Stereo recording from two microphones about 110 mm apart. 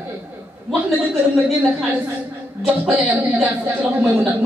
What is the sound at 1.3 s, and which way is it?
Speech, 10° right (ahead or behind).